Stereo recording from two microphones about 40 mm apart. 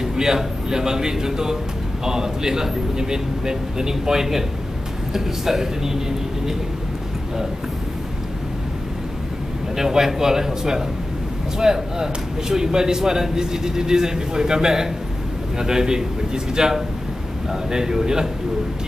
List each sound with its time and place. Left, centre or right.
0.0 s speech: centre
9.8 s speech: centre